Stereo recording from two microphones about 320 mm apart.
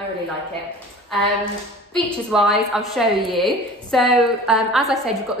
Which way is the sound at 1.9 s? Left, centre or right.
Centre.